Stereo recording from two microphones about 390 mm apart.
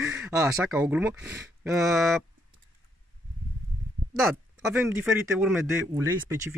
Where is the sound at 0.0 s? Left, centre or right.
Centre.